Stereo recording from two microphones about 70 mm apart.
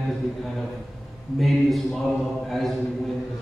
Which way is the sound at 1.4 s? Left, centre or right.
Centre.